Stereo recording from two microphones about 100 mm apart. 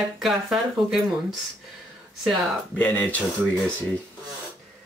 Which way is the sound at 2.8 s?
15° left (ahead or behind).